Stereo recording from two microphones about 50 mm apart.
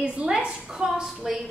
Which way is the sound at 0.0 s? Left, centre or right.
Right.